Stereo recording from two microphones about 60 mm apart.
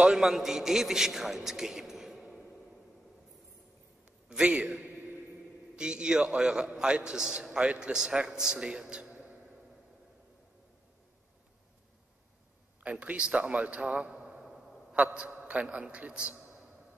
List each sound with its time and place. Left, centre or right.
0.0 s a man's voice: centre
4.3 s a man's voice: centre
13.0 s a man's voice: right
15.1 s speech: right